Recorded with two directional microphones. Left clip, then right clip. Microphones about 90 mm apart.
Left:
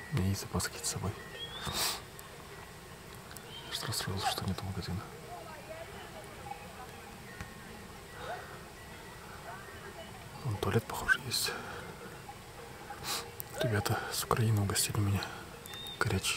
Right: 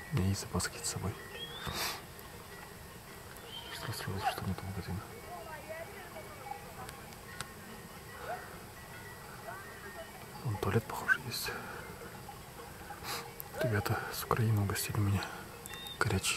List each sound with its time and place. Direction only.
0.1 s speech: 5° right (ahead or behind)
1.6 s a sound: 5° left (ahead or behind)
3.7 s speech: 20° left (ahead or behind)
10.6 s speech: 5° left (ahead or behind)
13.0 s speech: 5° left (ahead or behind)